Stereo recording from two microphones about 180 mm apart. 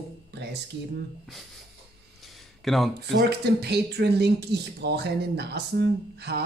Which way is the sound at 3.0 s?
65° right (ahead or behind).